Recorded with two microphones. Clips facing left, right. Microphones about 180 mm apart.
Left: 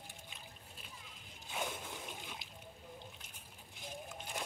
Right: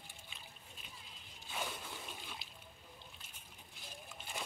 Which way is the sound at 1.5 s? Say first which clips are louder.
Left 2 dB; 15° left (ahead or behind).